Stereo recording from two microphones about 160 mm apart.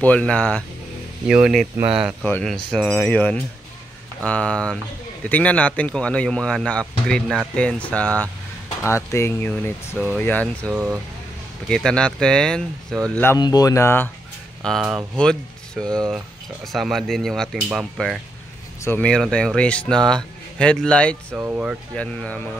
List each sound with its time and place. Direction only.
0.0 s speech: 10° left (ahead or behind)
1.2 s speech: 5° right (ahead or behind); by 13.4 s 10° left (ahead or behind)
13.4 s speech: 25° left (ahead or behind)
14.6 s speech: centre (ahead or behind)
21.3 s speech: 15° right (ahead or behind)
21.9 s speech: 5° left (ahead or behind)